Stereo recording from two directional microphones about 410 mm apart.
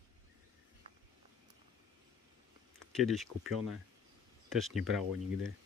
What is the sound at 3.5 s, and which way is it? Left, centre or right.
Speech, right.